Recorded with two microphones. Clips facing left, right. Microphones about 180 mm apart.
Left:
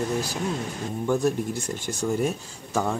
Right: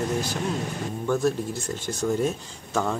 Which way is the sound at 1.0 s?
15° left (ahead or behind).